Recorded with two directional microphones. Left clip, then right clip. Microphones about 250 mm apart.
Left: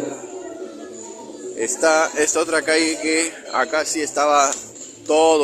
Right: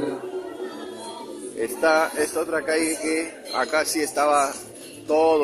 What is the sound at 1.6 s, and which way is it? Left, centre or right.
A man's voice, centre.